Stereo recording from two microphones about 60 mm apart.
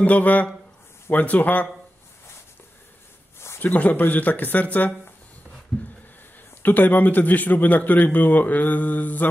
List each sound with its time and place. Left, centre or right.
0.0 s a man's voice: left
3.3 s a sound: left
3.6 s a man's voice: left
6.6 s a man's voice: left